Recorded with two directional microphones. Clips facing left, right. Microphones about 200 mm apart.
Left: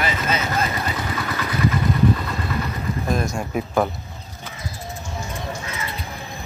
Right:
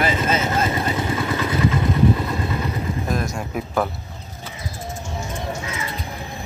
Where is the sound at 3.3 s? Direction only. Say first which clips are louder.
Left 2 dB; centre (ahead or behind).